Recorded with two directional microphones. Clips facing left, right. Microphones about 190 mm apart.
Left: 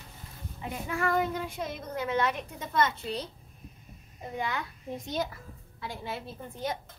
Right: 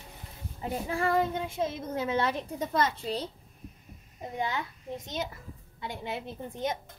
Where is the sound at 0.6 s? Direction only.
30° right (ahead or behind).